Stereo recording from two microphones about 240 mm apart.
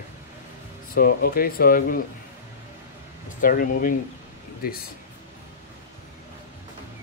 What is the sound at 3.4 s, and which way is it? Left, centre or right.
Speech, left.